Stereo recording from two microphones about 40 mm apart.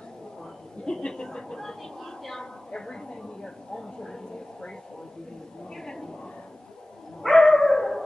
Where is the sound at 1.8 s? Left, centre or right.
Centre.